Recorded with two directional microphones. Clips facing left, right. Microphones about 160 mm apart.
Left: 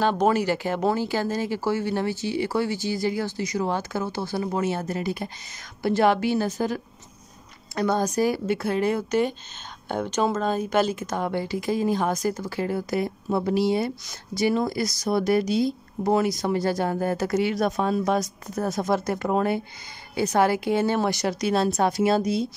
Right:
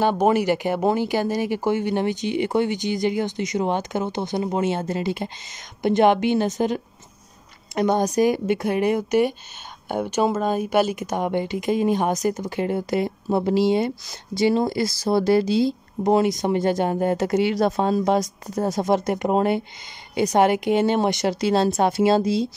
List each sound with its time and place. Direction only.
0.0 s speech: 15° right (ahead or behind)